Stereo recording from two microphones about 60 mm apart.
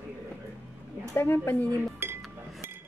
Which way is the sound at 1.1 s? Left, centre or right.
Left.